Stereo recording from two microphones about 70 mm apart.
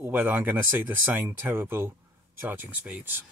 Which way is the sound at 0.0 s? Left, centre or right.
Right.